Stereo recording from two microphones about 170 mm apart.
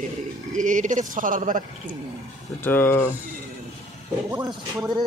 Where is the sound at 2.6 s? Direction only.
10° left (ahead or behind).